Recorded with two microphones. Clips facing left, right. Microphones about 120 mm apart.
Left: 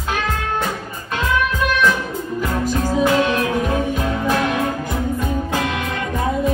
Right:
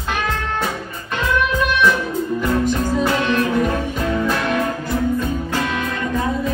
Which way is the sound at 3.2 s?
45° left (ahead or behind).